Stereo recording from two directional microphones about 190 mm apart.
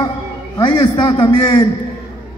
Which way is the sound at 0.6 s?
20° left (ahead or behind).